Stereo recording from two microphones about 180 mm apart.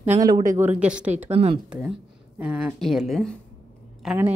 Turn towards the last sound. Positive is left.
turn(degrees=-10)  # may be behind; listen again after turning